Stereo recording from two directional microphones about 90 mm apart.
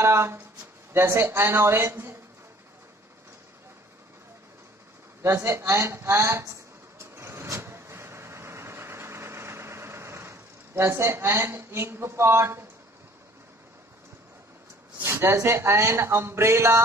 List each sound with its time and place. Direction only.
0.0 s speech: 30° right (ahead or behind)
5.2 s speech: 30° right (ahead or behind)
7.0 s vehicle: 30° right (ahead or behind)
15.0 s speech: 30° right (ahead or behind)